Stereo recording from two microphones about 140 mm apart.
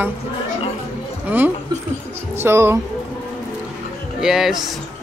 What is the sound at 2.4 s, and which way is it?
Speech, 15° right (ahead or behind).